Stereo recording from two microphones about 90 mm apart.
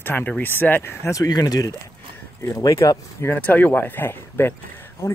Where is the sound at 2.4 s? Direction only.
35° left (ahead or behind).